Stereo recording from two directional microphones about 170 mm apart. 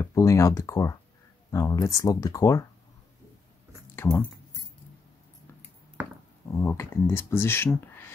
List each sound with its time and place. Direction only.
0.0 s speech: 20° left (ahead or behind)
4.0 s speech: 15° left (ahead or behind)
6.5 s speech: 15° left (ahead or behind)